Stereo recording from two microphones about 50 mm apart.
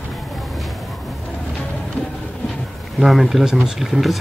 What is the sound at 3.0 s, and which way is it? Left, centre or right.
Speech, centre.